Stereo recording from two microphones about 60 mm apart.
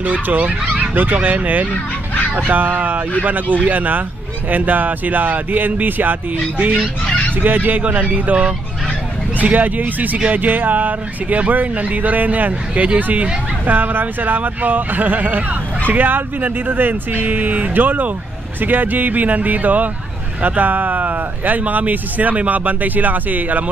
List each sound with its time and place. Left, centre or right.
0.0 s speech: right
1.7 s speech: left
2.3 s speech: right
7.3 s speech: right